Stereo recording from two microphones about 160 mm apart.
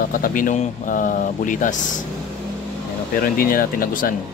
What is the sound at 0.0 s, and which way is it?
Speech, 60° left (ahead or behind).